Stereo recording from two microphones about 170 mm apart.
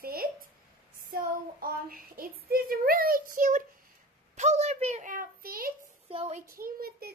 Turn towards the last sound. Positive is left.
turn(degrees=-60)  # may be behind; listen again after turning